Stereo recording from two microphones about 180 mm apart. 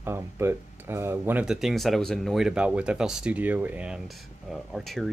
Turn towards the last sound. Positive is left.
turn(degrees=0)  # may be behind; listen again after turning